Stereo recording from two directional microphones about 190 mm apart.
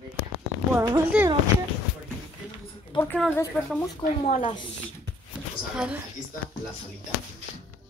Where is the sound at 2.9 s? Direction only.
25° left (ahead or behind).